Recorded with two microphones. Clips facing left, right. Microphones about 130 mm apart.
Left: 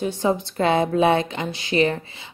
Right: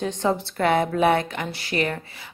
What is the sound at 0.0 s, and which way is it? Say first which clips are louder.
Speech: left 2 dB; 10° left (ahead or behind).